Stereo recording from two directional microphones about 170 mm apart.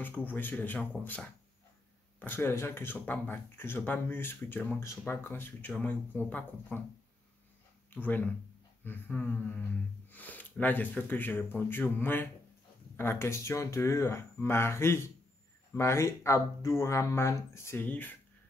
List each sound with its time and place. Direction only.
0.0 s speech: 10° left (ahead or behind)
7.9 s speech: 10° left (ahead or behind)